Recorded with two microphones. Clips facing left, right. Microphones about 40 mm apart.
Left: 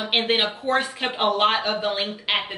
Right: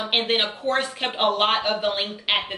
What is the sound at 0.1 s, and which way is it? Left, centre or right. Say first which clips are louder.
Speech: left 1 dB; centre.